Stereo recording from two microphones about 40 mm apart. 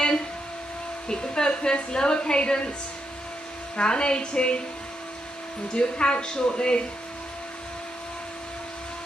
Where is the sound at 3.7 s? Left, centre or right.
Left.